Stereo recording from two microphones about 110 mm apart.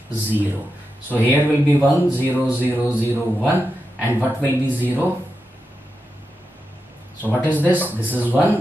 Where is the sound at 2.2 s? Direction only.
20° right (ahead or behind).